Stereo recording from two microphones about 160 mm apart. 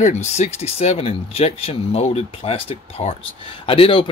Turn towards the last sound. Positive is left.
turn(degrees=35)  # may be behind; listen again after turning